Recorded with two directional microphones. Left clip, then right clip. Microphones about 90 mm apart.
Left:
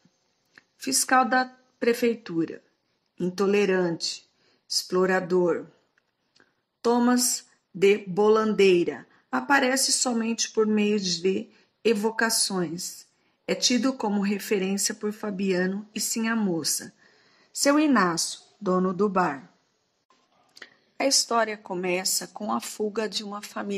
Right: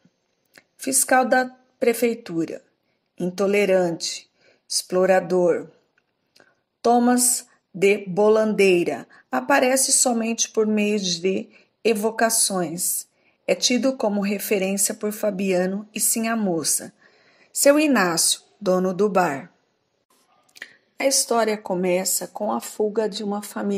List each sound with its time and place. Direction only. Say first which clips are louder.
0.5 s speech: right 2 dB; 45° right (ahead or behind)
4.0 s a sound: right 2 dB; 55° right (ahead or behind)
4.8 s a woman's voice: right 5 dB; 40° right (ahead or behind)
5.1 s speech: right 5 dB; 55° right (ahead or behind)
16.5 s a sound: right 4 dB; 50° right (ahead or behind)
18.8 s speech: right 3 dB; 60° right (ahead or behind)
21.0 s a woman's voice: right 3 dB; 40° right (ahead or behind)
22.4 s speech: right 7 dB; 25° right (ahead or behind)